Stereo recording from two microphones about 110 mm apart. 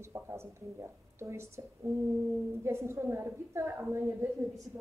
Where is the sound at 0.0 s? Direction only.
25° right (ahead or behind).